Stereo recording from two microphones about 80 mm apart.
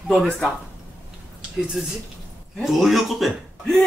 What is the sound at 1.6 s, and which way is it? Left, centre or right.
A woman's voice, centre.